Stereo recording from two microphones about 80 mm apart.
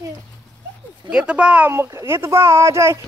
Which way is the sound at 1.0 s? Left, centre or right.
Centre.